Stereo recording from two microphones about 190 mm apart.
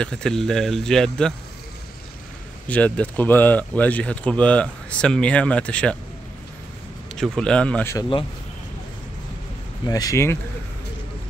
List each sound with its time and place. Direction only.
0.0 s speech: 5° left (ahead or behind)
2.7 s speech: 5° left (ahead or behind)
7.2 s speech: 5° left (ahead or behind)
9.8 s speech: 20° left (ahead or behind)